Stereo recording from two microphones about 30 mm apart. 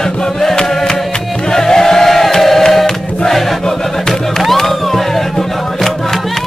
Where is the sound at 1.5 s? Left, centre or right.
Centre.